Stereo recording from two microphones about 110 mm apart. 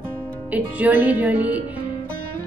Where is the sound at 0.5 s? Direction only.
15° right (ahead or behind).